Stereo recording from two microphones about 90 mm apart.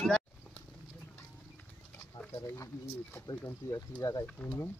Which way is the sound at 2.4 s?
35° left (ahead or behind).